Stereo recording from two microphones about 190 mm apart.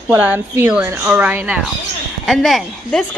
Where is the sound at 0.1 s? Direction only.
10° right (ahead or behind).